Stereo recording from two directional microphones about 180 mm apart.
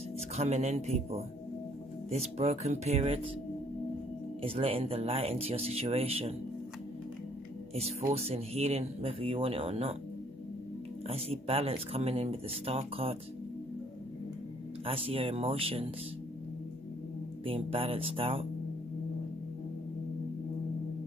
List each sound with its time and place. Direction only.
0.4 s speech: 40° right (ahead or behind)
4.4 s speech: 30° right (ahead or behind)
8.1 s speech: 35° right (ahead or behind)
11.1 s speech: 35° right (ahead or behind)
14.9 s speech: 30° right (ahead or behind)
17.5 s speech: 30° right (ahead or behind)